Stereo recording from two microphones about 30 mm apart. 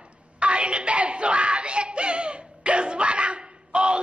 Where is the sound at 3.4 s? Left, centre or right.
Right.